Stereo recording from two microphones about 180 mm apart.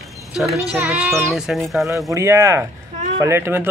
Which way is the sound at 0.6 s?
5° right (ahead or behind).